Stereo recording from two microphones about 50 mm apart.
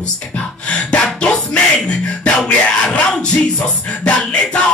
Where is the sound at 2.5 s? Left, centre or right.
Left.